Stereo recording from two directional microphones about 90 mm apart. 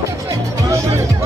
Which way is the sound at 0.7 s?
30° right (ahead or behind).